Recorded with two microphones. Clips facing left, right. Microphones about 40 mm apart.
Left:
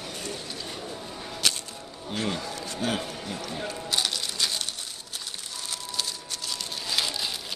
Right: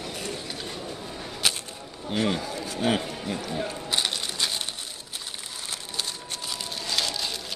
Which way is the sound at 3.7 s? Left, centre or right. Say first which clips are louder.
Right 1 dB; centre.